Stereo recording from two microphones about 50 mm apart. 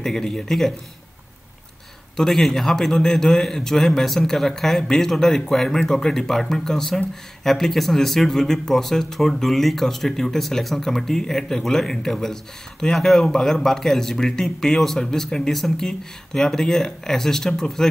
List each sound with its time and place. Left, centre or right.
0.0 s speech: centre
2.1 s speech: centre